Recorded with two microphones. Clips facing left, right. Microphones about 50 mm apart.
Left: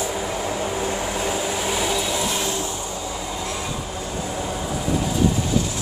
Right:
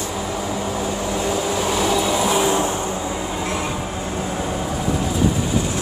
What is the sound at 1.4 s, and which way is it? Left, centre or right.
Train, centre.